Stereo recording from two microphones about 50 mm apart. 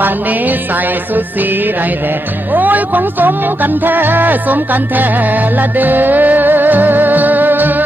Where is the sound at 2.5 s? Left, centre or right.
Right.